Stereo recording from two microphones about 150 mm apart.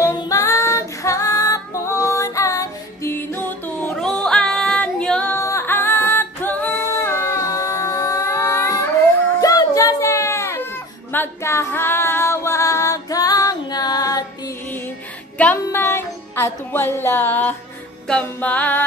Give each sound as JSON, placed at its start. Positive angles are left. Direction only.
{"t": 0.0, "sound": "female singing", "side_deg": 25}
{"t": 5.4, "sound": "singing", "side_deg": 20}
{"t": 9.4, "sound": "music", "side_deg": 25}
{"t": 11.1, "sound": "female singing", "side_deg": 15}
{"t": 15.3, "sound": "music", "side_deg": 10}